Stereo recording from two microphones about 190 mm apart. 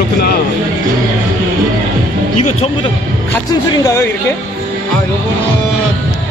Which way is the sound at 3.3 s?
20° left (ahead or behind).